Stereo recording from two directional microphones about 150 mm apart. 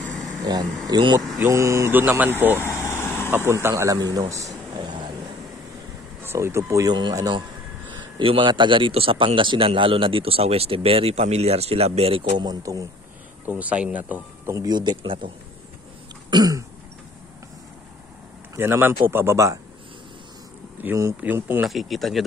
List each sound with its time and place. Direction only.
0.8 s speech: 30° right (ahead or behind); by 2.3 s 10° right (ahead or behind)
2.6 s vehicle: 15° left (ahead or behind)
3.3 s speech: 15° right (ahead or behind)
6.2 s a man's voice: 15° right (ahead or behind); by 12.2 s 40° right (ahead or behind)
12.3 s speech: 30° right (ahead or behind)
13.5 s speech: 10° right (ahead or behind); by 15.3 s 30° right (ahead or behind)
16.3 s throat clearing: 25° right (ahead or behind)
18.6 s speech: 15° right (ahead or behind)
20.8 s speech: 20° right (ahead or behind)
21.6 s speech: centre (ahead or behind)